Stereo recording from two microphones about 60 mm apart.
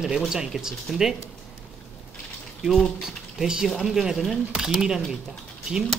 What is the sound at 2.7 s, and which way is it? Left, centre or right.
Speech, centre.